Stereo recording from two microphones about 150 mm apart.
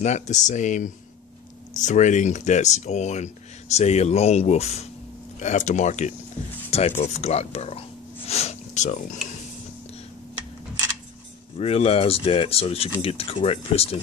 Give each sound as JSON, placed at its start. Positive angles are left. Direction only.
{"t": 0.0, "sound": "speech", "side_deg": 50}
{"t": 8.3, "sound": "a sound", "side_deg": 45}
{"t": 11.5, "sound": "speech", "side_deg": 45}